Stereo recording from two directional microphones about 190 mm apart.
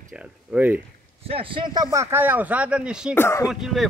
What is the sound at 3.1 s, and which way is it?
Speech, 15° left (ahead or behind).